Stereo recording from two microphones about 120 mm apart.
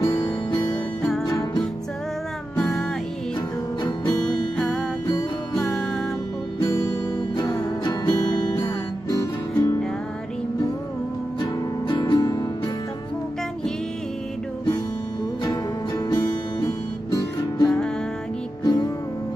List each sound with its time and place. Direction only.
0.0 s music: 20° left (ahead or behind)
2.5 s music: 5° left (ahead or behind)
4.6 s music: centre (ahead or behind)
7.3 s music: 35° left (ahead or behind)
9.2 s music: 25° left (ahead or behind)
11.9 s music: 40° left (ahead or behind)
16.6 s music: 30° left (ahead or behind)
17.6 s music: 5° left (ahead or behind)
18.6 s music: 35° left (ahead or behind)